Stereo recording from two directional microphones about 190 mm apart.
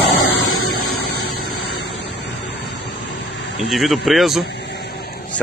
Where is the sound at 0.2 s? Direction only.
90° left.